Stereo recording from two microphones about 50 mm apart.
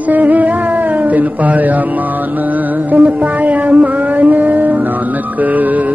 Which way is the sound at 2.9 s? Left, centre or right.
Right.